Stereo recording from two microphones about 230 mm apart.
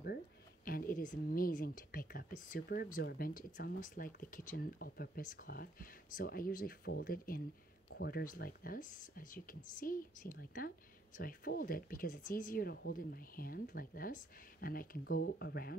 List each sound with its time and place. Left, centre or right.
0.7 s speech: left